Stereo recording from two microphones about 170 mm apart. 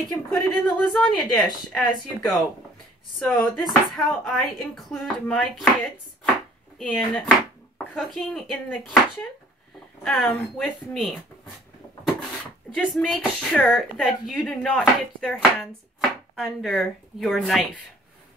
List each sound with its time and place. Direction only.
0.1 s speech: 20° left (ahead or behind)
0.8 s speech: centre (ahead or behind)
6.8 s speech: 5° left (ahead or behind)
10.0 s speech: centre (ahead or behind)
12.8 s speech: centre (ahead or behind)